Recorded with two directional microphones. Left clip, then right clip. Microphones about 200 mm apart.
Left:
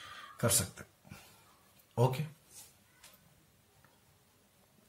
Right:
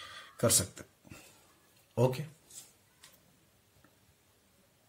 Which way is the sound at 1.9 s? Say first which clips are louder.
Right 2 dB; 45° right (ahead or behind).